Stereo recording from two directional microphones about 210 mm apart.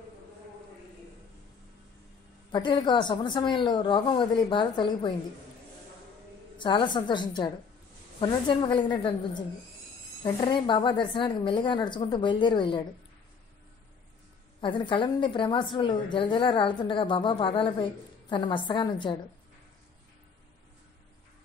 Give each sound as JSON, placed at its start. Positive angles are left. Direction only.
{"t": 2.5, "sound": "a woman's voice", "side_deg": 20}
{"t": 6.6, "sound": "a woman's voice", "side_deg": 20}
{"t": 10.2, "sound": "a woman's voice", "side_deg": 20}
{"t": 14.6, "sound": "a woman's voice", "side_deg": 25}